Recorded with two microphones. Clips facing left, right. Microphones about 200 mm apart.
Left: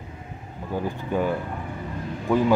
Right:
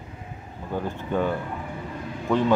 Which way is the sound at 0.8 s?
10° left (ahead or behind).